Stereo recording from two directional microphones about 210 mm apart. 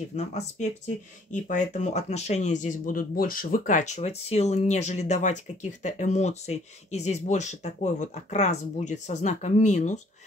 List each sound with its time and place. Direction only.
0.1 s speech: 30° left (ahead or behind)